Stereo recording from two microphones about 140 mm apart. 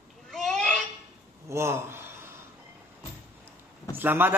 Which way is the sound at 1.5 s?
20° right (ahead or behind).